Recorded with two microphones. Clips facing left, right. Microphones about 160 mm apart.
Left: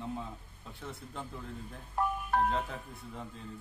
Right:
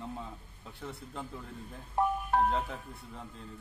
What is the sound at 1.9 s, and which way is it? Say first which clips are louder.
Speech: right 2 dB; 25° right (ahead or behind).